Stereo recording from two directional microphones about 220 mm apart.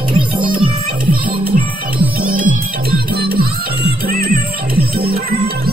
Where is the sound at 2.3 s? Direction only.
40° right (ahead or behind).